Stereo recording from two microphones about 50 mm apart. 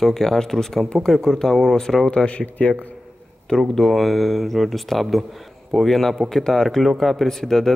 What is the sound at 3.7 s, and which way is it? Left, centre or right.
Speech, centre.